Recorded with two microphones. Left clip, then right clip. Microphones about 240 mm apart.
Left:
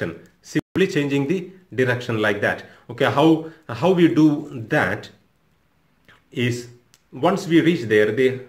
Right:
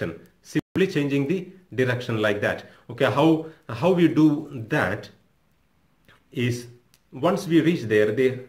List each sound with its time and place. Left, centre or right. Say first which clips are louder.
0.0 s a man's voice: left 3 dB; centre